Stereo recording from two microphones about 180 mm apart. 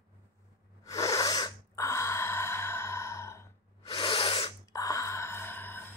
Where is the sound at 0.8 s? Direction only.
20° left (ahead or behind).